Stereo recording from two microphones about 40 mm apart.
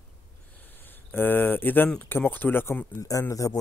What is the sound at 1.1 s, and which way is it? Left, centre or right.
Speech, left.